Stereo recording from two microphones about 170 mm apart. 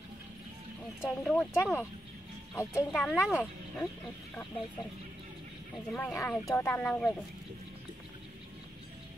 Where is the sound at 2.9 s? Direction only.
Centre (ahead or behind).